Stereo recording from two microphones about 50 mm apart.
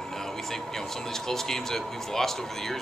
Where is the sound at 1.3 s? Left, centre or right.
Centre.